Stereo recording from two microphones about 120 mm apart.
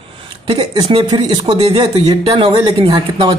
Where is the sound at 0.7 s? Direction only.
45° right (ahead or behind).